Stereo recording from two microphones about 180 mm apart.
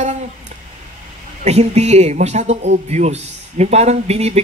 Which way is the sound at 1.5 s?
40° right (ahead or behind).